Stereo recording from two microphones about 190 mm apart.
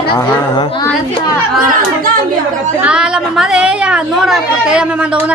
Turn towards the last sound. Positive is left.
turn(degrees=-5)  # may be behind; listen again after turning